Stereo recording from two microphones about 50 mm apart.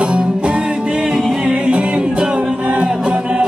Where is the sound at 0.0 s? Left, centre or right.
Right.